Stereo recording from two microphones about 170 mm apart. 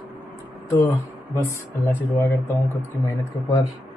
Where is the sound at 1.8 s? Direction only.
10° left (ahead or behind).